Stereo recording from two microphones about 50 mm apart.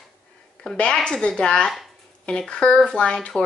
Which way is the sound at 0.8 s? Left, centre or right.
Left.